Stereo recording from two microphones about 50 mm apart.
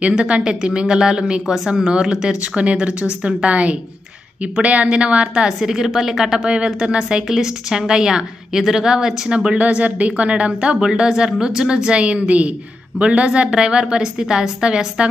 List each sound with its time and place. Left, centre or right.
0.4 s a woman's voice: centre
5.6 s a woman's voice: centre